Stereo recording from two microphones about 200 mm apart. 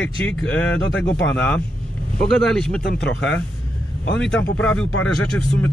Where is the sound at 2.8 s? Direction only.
60° left (ahead or behind).